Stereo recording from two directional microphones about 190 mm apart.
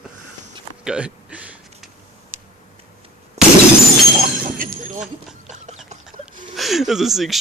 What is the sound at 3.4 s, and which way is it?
Breaking, 5° right (ahead or behind).